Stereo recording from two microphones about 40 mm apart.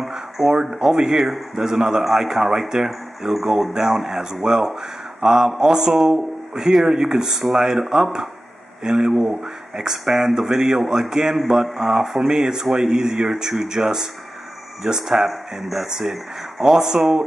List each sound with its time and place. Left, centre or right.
0.7 s speech: centre